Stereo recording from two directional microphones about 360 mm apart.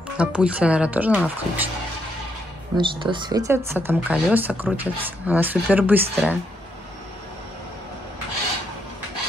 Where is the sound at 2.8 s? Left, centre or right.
Centre.